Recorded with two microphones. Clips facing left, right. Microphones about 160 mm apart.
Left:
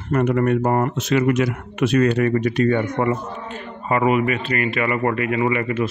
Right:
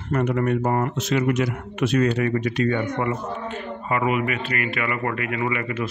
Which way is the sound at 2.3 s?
45° left (ahead or behind).